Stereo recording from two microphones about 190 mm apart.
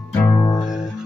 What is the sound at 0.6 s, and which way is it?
Music, 5° right (ahead or behind).